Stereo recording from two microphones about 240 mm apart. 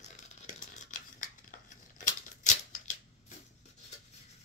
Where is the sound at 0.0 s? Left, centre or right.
Left.